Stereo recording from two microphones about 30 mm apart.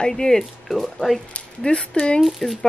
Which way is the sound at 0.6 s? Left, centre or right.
Centre.